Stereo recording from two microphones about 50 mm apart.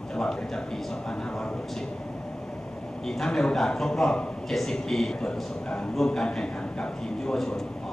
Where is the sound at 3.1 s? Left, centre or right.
Centre.